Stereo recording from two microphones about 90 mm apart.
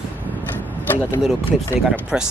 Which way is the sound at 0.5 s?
20° left (ahead or behind).